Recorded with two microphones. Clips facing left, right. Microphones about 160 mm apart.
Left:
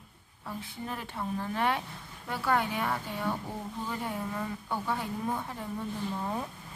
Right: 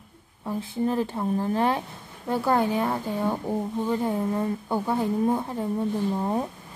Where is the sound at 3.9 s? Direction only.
30° right (ahead or behind).